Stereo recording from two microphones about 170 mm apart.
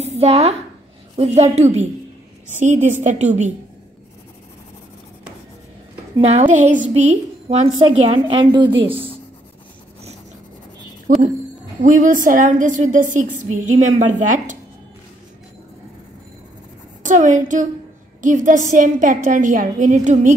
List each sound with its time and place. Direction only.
0.0 s a woman's voice: 40° right (ahead or behind)
6.1 s a woman's voice: 40° right (ahead or behind)
7.1 s a woman's voice: 35° right (ahead or behind)
11.1 s a woman's voice: 55° right (ahead or behind)
17.0 s a woman's voice: 50° right (ahead or behind)